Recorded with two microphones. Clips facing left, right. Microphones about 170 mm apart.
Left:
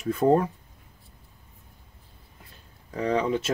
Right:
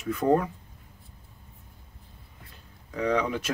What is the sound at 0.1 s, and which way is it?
Speech, 30° left (ahead or behind).